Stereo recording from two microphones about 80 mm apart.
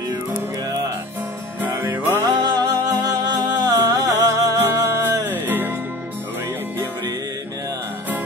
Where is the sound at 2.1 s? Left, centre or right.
Right.